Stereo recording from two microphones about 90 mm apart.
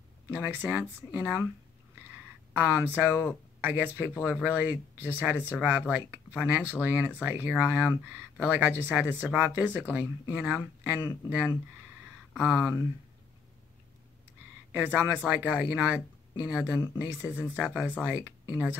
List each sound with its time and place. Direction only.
0.3 s speech: 20° right (ahead or behind)
2.5 s speech: 20° right (ahead or behind)
14.7 s speech: 25° right (ahead or behind)